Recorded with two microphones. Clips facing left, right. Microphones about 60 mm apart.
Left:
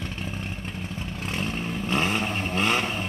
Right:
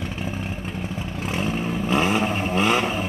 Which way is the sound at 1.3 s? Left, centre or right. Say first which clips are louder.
Right 5 dB; centre.